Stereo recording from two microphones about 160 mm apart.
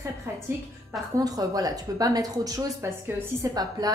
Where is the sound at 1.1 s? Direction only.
20° right (ahead or behind).